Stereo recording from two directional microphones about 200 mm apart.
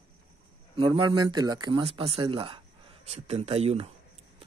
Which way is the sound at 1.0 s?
20° right (ahead or behind).